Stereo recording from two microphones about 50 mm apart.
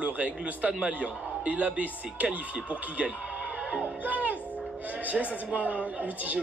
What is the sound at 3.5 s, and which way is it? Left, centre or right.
Music, right.